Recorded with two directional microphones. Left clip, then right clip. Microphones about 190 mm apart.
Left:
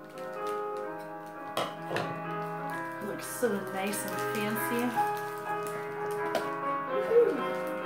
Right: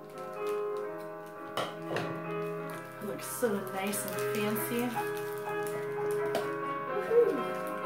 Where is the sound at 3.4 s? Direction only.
Centre (ahead or behind).